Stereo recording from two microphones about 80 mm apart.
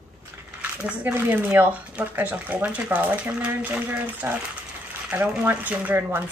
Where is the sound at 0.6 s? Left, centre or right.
Centre.